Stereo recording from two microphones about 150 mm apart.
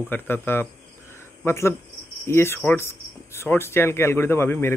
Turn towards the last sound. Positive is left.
turn(degrees=15)  # may be behind; listen again after turning